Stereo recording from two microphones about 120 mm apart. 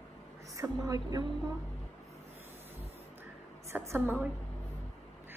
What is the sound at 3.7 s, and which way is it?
Speech, 20° right (ahead or behind).